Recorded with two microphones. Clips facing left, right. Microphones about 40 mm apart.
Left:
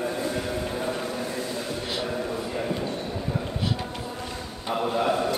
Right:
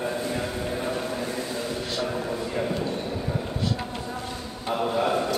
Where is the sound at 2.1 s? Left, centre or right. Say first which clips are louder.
Even; centre.